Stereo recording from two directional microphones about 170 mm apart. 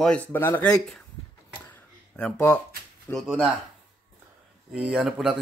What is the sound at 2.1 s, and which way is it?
Speech, 5° left (ahead or behind).